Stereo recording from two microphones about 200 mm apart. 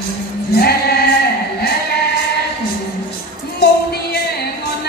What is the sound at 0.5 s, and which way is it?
Choir, 50° left (ahead or behind).